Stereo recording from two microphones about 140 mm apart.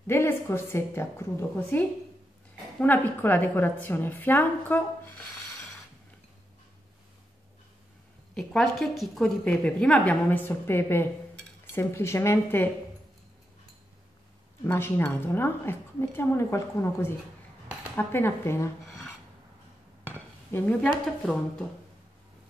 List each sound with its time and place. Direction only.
0.0 s a woman's voice: 20° left (ahead or behind)
8.4 s a woman's voice: centre (ahead or behind); by 12.6 s 15° left (ahead or behind)
14.6 s a woman's voice: 15° left (ahead or behind)
20.5 s a woman's voice: 15° left (ahead or behind)